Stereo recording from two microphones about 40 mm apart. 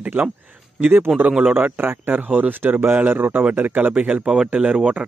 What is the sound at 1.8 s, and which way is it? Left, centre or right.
Speech, right.